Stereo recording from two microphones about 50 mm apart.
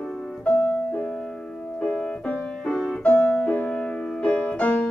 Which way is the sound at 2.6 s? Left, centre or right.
Centre.